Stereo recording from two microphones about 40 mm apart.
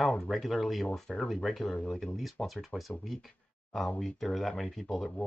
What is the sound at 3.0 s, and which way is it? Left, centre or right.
Speech, centre.